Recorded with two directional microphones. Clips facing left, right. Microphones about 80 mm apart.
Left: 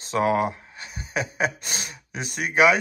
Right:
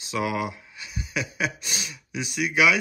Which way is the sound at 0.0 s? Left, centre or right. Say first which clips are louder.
Left 5 dB; left.